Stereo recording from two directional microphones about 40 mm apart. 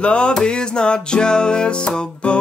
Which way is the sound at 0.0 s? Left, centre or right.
Left.